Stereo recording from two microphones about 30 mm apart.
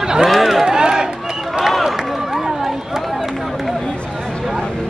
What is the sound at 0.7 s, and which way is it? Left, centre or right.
Run, right.